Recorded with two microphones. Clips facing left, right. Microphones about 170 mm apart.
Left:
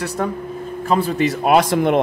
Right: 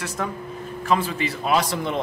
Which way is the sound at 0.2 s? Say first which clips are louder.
Left 6 dB; 40° left (ahead or behind).